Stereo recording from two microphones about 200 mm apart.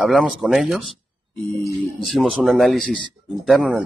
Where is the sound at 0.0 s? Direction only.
Centre (ahead or behind).